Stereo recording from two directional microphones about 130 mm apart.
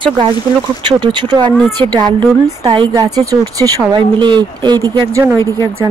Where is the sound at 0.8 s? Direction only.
35° right (ahead or behind).